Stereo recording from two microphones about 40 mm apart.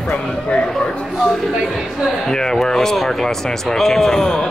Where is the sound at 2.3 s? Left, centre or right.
Centre.